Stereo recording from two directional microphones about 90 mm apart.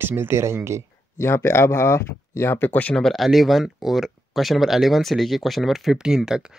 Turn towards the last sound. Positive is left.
turn(degrees=-5)  # may be behind; listen again after turning